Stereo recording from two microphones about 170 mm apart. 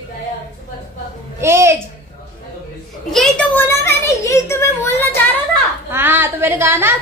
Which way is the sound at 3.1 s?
5° left (ahead or behind).